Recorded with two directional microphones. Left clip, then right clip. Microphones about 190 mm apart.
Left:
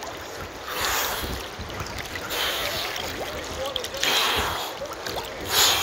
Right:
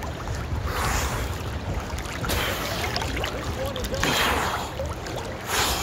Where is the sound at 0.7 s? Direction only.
15° left (ahead or behind).